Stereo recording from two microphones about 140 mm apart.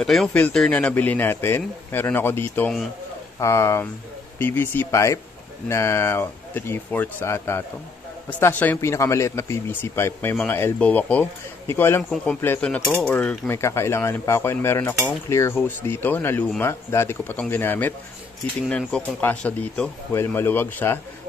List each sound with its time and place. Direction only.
0.0 s speech: centre (ahead or behind)